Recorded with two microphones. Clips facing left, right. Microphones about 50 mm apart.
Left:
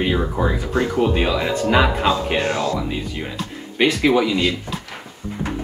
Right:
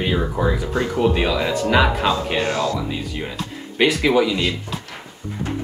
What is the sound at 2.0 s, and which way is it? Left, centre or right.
Speech, left.